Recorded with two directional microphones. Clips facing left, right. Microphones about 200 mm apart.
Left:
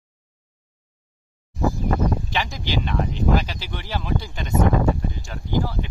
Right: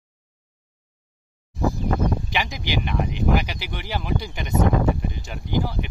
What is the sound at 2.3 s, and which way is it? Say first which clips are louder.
Speech: even; 15° right (ahead or behind).